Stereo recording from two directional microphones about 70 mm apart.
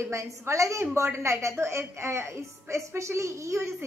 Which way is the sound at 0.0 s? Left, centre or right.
Right.